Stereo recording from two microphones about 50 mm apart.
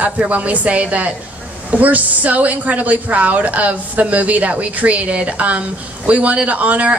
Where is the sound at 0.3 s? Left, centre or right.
Right.